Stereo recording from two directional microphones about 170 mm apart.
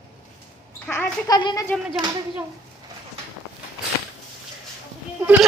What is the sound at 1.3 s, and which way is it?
Speech, 25° left (ahead or behind).